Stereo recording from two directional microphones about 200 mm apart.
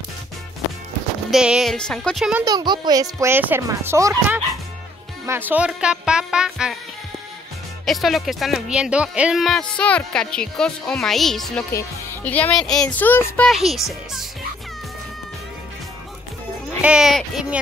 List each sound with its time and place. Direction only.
1.3 s speech: 5° right (ahead or behind)
2.4 s speech: 20° right (ahead or behind); by 6.8 s 5° right (ahead or behind)
7.8 s speech: centre (ahead or behind)
13.5 s speech: centre (ahead or behind)
16.8 s speech: 5° right (ahead or behind)